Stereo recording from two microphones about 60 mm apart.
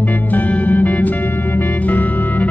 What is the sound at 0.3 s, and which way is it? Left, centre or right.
Music, left.